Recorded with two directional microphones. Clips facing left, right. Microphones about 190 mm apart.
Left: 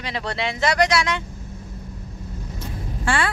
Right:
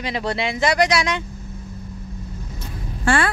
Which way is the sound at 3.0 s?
50° right (ahead or behind).